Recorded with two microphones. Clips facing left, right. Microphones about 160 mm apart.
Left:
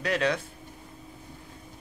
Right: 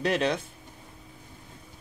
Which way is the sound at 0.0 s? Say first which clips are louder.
Right 1 dB; 25° right (ahead or behind).